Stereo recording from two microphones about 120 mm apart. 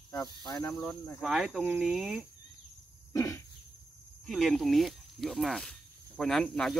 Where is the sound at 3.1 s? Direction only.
25° left (ahead or behind).